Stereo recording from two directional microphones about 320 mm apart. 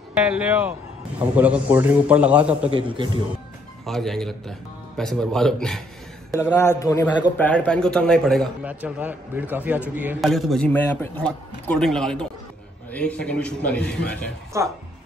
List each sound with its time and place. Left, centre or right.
0.1 s a man's voice: centre
2.7 s a man's voice: centre
3.8 s a man's voice: centre
14.5 s a man's voice: centre